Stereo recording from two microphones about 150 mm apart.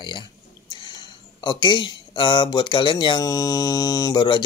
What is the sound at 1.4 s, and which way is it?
Speech, 30° left (ahead or behind).